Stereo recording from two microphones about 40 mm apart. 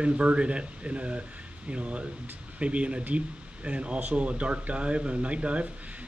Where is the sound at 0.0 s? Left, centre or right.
Right.